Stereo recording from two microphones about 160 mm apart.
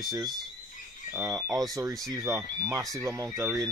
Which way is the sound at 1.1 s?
15° right (ahead or behind).